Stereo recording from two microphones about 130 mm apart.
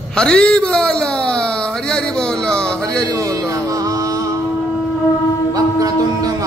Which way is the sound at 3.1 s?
30° right (ahead or behind).